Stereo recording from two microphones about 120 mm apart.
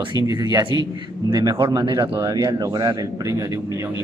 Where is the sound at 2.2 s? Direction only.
25° right (ahead or behind).